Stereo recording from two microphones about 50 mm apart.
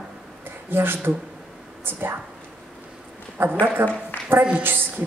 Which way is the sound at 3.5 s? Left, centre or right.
Right.